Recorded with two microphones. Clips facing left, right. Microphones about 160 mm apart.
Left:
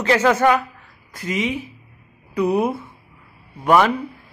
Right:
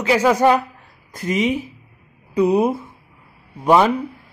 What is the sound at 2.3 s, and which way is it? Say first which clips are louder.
Speech: right 3 dB; 20° right (ahead or behind).